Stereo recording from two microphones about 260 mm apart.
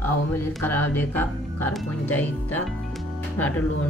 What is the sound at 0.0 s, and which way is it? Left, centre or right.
Speech, centre.